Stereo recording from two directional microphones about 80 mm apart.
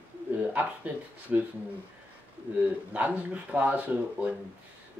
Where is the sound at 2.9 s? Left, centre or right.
Centre.